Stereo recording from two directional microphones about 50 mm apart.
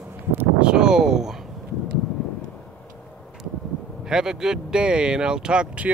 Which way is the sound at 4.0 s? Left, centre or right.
Centre.